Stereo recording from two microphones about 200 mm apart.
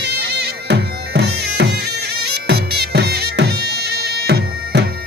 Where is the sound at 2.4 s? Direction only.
55° right (ahead or behind).